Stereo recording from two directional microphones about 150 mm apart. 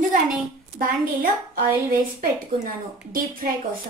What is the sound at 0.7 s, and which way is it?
A woman's voice, 75° right (ahead or behind).